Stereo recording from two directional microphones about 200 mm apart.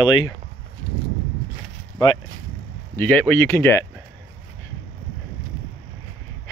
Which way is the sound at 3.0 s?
10° left (ahead or behind).